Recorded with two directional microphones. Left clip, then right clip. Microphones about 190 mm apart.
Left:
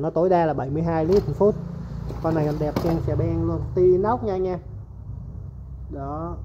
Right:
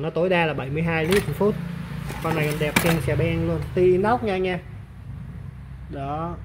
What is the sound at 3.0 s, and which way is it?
Speech, 30° right (ahead or behind).